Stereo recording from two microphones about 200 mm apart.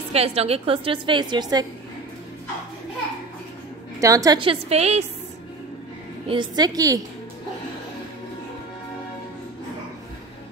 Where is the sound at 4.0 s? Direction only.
15° right (ahead or behind); by 5.0 s 30° right (ahead or behind).